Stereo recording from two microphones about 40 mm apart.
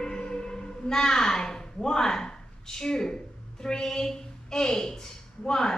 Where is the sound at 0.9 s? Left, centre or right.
Centre.